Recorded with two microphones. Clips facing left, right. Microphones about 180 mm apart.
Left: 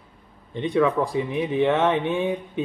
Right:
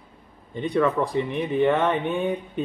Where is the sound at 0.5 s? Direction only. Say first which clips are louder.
Left 1 dB; centre (ahead or behind).